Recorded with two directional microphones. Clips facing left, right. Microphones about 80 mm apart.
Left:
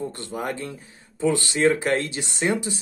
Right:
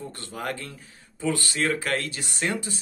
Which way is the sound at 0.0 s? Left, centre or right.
Left.